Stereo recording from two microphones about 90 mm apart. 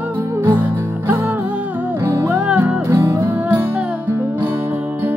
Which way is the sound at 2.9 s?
30° right (ahead or behind).